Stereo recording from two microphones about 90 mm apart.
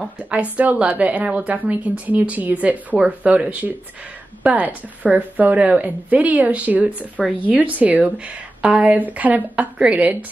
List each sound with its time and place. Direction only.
0.0 s speech: 15° right (ahead or behind)
7.2 s speech: 5° left (ahead or behind)
7.5 s speech: 15° right (ahead or behind)